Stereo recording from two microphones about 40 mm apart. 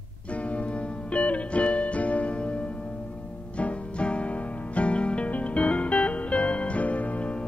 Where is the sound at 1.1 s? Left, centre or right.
Left.